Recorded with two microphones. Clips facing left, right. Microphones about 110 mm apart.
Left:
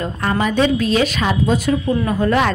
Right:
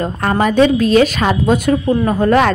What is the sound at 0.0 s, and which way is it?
A woman's voice, 45° right (ahead or behind).